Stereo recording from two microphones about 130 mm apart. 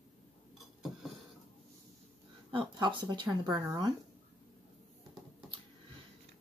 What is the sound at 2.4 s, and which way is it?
Speech, 40° right (ahead or behind).